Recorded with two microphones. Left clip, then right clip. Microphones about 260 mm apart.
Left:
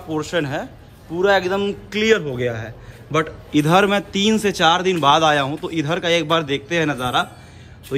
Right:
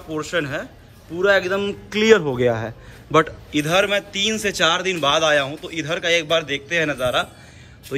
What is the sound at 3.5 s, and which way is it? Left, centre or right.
Speech, centre.